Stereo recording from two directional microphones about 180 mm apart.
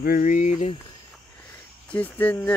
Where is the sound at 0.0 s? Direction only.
50° left (ahead or behind).